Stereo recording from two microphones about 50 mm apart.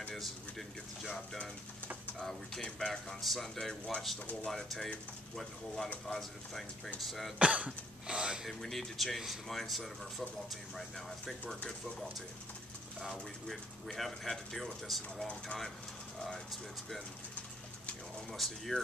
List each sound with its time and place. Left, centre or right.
0.1 s speech: centre
7.3 s speech: right
8.5 s speech: centre
13.1 s speech: centre
18.3 s speech: centre